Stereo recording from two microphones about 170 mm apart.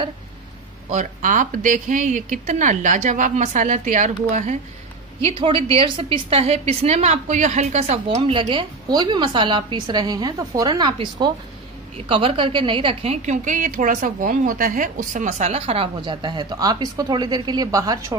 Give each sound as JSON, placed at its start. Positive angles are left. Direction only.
{"t": 0.9, "sound": "speech", "side_deg": -50}
{"t": 5.2, "sound": "a woman's voice", "side_deg": -30}